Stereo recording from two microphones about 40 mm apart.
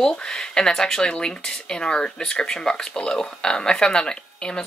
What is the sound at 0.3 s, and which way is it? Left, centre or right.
Speech, centre.